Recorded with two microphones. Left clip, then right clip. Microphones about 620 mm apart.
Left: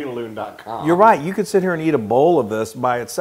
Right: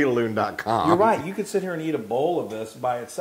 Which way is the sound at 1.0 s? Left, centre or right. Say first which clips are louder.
Left 7 dB; left.